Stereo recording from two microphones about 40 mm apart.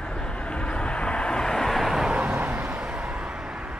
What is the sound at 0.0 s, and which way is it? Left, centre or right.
Vehicle, left.